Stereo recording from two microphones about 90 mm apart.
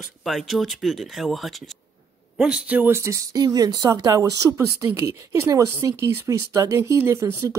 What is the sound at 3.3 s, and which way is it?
Speech, 45° right (ahead or behind).